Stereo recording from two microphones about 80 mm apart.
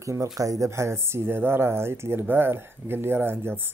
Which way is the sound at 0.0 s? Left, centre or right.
Right.